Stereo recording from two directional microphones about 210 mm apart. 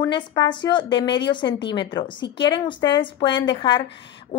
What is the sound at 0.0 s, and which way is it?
A woman's voice, 20° left (ahead or behind).